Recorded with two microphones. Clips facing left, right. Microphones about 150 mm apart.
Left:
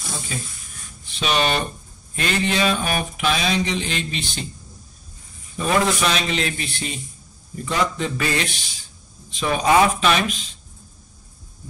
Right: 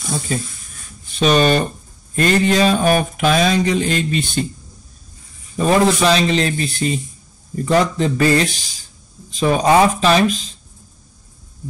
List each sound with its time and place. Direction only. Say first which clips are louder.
0.3 s mantra: right 8 dB; 45° right (ahead or behind)
5.6 s speech: right 6 dB; 35° right (ahead or behind)